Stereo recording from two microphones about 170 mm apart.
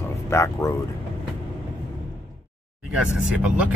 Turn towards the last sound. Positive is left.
turn(degrees=-5)  # may be behind; listen again after turning